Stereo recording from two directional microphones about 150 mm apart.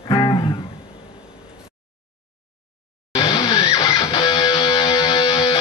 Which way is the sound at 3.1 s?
35° left (ahead or behind).